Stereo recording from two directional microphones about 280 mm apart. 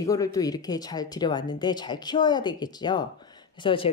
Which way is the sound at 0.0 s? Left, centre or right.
Centre.